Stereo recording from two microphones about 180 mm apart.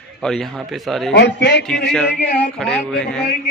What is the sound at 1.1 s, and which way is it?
Speech, 70° left (ahead or behind).